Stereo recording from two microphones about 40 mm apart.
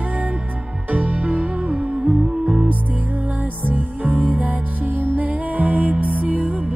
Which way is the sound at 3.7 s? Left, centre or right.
Right.